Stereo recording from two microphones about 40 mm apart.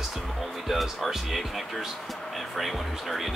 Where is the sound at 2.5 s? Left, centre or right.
Centre.